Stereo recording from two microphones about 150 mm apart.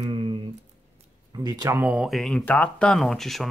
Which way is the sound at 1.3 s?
25° right (ahead or behind).